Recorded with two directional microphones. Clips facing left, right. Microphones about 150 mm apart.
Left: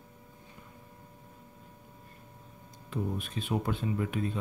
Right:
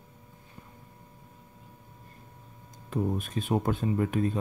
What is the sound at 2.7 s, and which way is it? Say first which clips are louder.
Speech: right 5 dB; 45° right (ahead or behind).